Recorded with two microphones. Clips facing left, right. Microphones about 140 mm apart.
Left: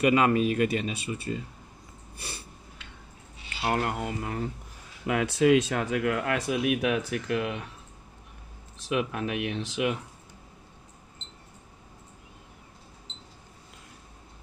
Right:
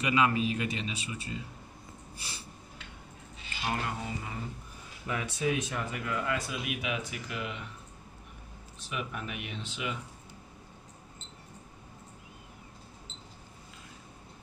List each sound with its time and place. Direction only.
0.0 s speech: 50° left (ahead or behind)
2.1 s a sound: 60° left (ahead or behind)
3.6 s speech: 65° left (ahead or behind)
5.0 s speech: 75° left (ahead or behind)
8.8 s speech: 75° left (ahead or behind)